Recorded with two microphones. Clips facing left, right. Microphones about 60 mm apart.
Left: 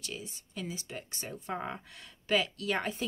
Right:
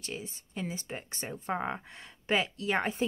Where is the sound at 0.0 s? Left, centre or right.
Right.